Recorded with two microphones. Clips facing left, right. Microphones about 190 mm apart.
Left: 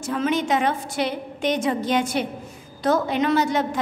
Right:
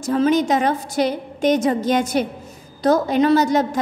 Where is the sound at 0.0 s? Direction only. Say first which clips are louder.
Right 6 dB; 40° right (ahead or behind).